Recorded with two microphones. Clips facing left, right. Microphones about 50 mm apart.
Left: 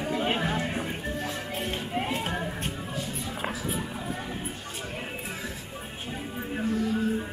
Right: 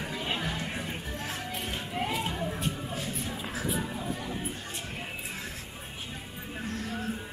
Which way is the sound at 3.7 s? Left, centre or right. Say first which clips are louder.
Even; left.